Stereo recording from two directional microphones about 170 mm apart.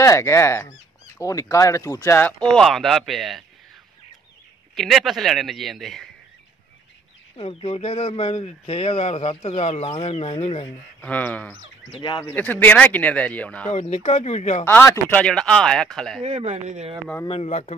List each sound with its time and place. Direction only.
0.0 s speech: 15° left (ahead or behind); by 3.4 s centre (ahead or behind)
4.7 s speech: centre (ahead or behind)
7.3 s speech: 35° left (ahead or behind)
11.0 s speech: 10° left (ahead or behind)
12.0 s speech: 25° left (ahead or behind)
12.4 s speech: 10° left (ahead or behind)
13.7 s speech: 40° left (ahead or behind)
14.7 s speech: 10° left (ahead or behind)
16.3 s speech: 40° right (ahead or behind)
17.3 s speech: 40° left (ahead or behind)